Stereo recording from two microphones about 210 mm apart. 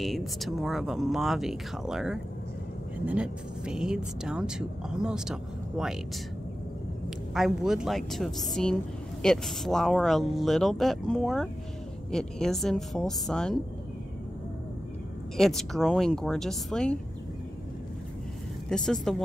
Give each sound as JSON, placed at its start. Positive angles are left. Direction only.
{"t": 0.0, "sound": "speech", "side_deg": 0}
{"t": 7.3, "sound": "speech", "side_deg": 0}
{"t": 15.3, "sound": "speech", "side_deg": 0}
{"t": 18.7, "sound": "speech", "side_deg": 5}